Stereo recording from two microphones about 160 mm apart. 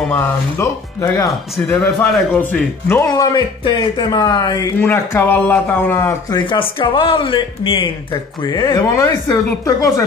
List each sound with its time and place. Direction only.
0.0 s speech: 10° left (ahead or behind)
3.1 s speech: 25° left (ahead or behind)
6.4 s speech: 30° left (ahead or behind)